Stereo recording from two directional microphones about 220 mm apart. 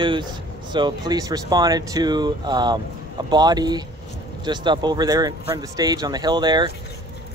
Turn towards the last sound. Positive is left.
turn(degrees=-20)  # may be behind; listen again after turning